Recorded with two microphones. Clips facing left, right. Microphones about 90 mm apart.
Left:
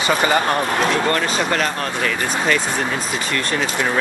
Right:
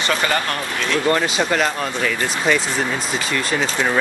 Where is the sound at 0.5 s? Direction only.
40° left (ahead or behind).